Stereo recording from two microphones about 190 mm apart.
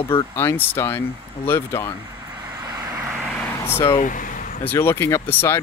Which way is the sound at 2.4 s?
20° right (ahead or behind).